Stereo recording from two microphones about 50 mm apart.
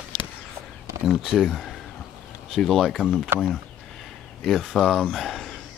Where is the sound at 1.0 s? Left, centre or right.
Centre.